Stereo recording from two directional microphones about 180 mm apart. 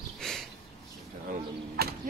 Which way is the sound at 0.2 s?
5° left (ahead or behind).